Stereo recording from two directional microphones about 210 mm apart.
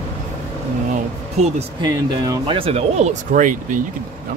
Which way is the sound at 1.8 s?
20° right (ahead or behind).